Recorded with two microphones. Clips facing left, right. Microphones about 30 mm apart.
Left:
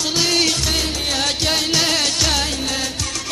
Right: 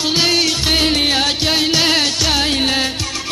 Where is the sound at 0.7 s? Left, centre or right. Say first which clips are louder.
Right 7 dB; right.